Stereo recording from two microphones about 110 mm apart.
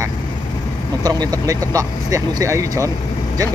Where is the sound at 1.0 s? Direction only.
35° right (ahead or behind).